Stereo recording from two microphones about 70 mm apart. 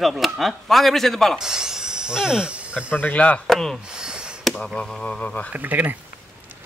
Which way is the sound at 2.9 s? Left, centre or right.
Left.